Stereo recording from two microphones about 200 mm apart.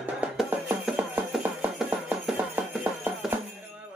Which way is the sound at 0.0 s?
5° right (ahead or behind).